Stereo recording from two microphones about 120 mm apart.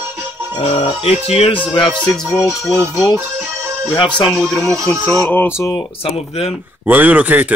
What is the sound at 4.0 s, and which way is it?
Speech, 40° left (ahead or behind).